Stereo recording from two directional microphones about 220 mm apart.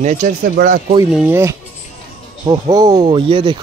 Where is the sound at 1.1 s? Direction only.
5° right (ahead or behind); by 3.6 s 20° right (ahead or behind).